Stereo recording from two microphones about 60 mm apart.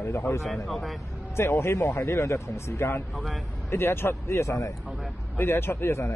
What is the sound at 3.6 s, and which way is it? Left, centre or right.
A man's voice, left.